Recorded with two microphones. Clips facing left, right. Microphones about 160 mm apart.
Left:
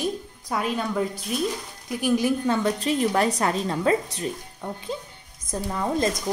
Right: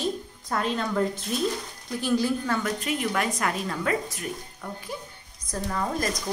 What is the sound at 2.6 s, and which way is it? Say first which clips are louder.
A woman's voice: left 5 dB; 35° left (ahead or behind).